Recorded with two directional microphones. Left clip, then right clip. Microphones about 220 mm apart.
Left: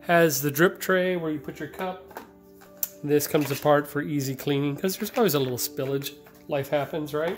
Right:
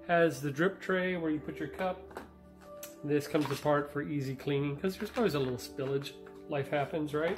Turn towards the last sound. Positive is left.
turn(degrees=30)  # may be behind; listen again after turning